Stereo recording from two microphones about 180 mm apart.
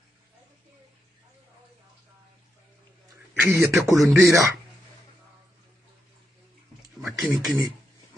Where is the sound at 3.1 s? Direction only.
15° right (ahead or behind).